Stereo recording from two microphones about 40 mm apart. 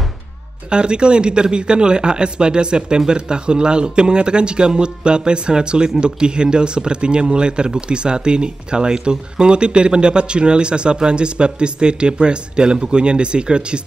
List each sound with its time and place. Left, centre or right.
0.7 s speech: right